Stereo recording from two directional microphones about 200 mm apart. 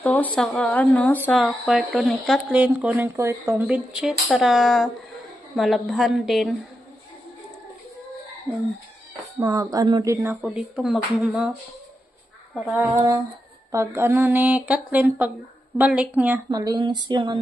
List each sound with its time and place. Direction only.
0.0 s speech: 10° left (ahead or behind)
9.4 s speech: 15° right (ahead or behind)
10.3 s speech: centre (ahead or behind)
12.5 s speech: centre (ahead or behind)
12.9 s a sound: 25° right (ahead or behind)
13.7 s speech: 15° right (ahead or behind)
16.4 s a sound: 20° right (ahead or behind)